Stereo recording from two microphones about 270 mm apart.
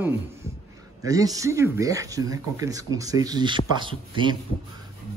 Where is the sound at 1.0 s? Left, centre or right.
Centre.